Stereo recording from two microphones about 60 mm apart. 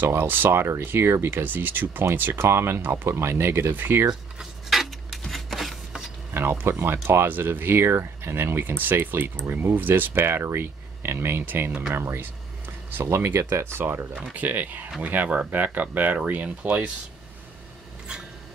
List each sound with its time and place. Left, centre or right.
0.0 s speech: right
4.4 s a sound: centre
6.3 s speech: right
11.9 s a sound: right
13.0 s speech: right
14.3 s speech: right